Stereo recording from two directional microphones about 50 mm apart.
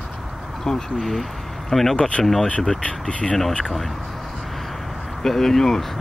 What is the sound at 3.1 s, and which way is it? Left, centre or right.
Speech, left.